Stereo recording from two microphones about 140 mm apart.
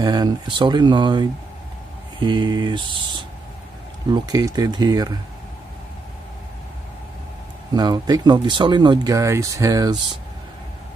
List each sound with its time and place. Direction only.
0.0 s speech: 30° right (ahead or behind)
4.1 s speech: 30° right (ahead or behind)
7.7 s speech: 30° right (ahead or behind)